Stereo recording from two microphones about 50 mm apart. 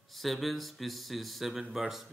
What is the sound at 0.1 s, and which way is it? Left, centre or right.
Speech, centre.